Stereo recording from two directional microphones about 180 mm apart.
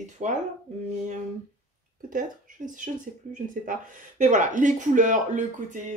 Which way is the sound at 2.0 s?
45° right (ahead or behind).